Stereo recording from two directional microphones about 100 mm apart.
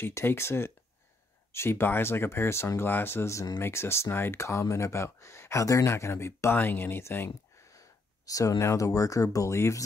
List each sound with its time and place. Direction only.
0.0 s speech: 25° left (ahead or behind)